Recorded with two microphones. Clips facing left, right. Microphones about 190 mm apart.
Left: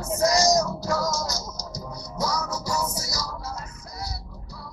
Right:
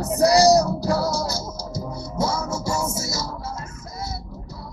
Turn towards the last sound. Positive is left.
turn(degrees=-25)  # may be behind; listen again after turning